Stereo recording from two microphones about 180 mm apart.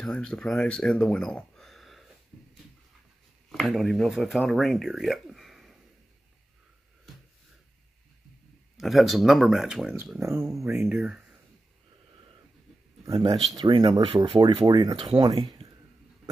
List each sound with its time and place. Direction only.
0.0 s speech: 5° left (ahead or behind)
3.5 s speech: centre (ahead or behind)
8.7 s speech: centre (ahead or behind)
10.5 s speech: 15° right (ahead or behind)
10.9 s speech: 5° right (ahead or behind)
13.1 s speech: 25° right (ahead or behind)